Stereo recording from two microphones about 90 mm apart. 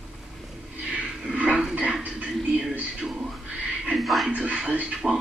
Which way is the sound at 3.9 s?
Centre (ahead or behind).